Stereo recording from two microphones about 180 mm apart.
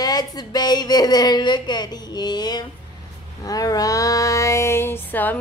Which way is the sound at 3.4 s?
20° left (ahead or behind).